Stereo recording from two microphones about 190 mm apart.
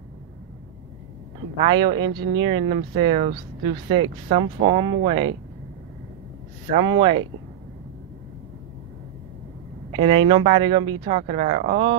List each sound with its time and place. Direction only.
1.7 s speech: 25° right (ahead or behind)
6.7 s speech: 25° right (ahead or behind)
9.9 s speech: 25° right (ahead or behind)